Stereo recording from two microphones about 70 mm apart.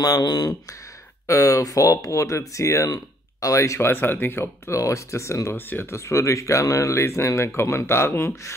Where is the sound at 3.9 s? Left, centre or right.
Left.